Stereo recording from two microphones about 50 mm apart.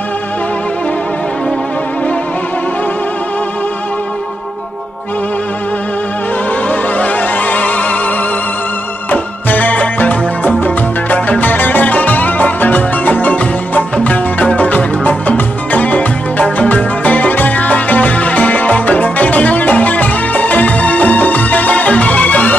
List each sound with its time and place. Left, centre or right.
6.7 s music: left
9.1 s music: left